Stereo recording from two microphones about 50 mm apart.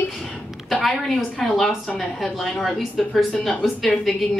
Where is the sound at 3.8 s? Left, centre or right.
Centre.